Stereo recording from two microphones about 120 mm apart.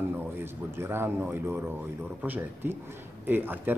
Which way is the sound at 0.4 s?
20° right (ahead or behind).